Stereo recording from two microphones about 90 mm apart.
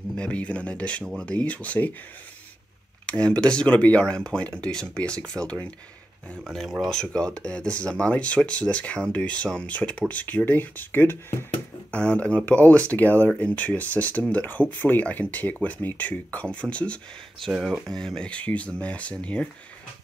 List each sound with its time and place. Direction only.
0.2 s speech: 15° left (ahead or behind)
3.1 s speech: 10° left (ahead or behind)
6.4 s speech: centre (ahead or behind); by 11.3 s 25° left (ahead or behind)
11.9 s speech: 15° left (ahead or behind)